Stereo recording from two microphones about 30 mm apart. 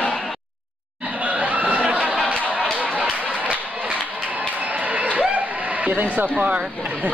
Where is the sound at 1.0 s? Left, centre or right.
Right.